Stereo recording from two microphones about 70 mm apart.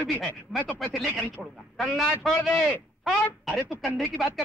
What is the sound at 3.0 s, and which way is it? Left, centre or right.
A woman's voice, centre.